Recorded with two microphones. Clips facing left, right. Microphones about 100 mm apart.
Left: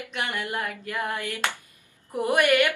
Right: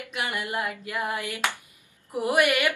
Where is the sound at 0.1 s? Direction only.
10° right (ahead or behind).